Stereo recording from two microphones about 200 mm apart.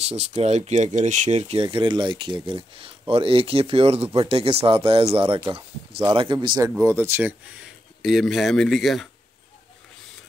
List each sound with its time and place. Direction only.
0.0 s speech: 30° right (ahead or behind); by 9.1 s centre (ahead or behind)